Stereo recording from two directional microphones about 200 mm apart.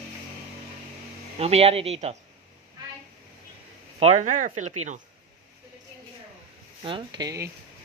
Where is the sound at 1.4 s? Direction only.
30° right (ahead or behind).